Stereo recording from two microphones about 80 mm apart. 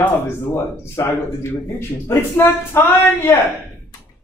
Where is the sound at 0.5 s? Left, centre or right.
Left.